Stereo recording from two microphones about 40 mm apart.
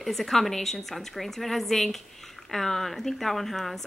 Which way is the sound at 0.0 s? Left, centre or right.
Centre.